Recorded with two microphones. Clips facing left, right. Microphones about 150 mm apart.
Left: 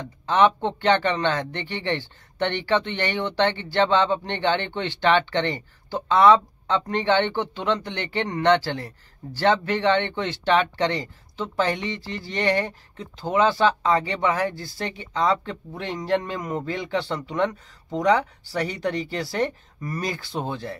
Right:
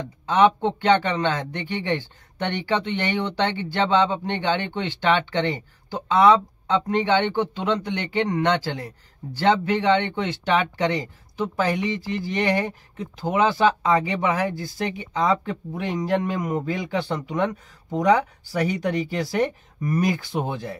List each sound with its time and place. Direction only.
0.3 s speech: 10° right (ahead or behind)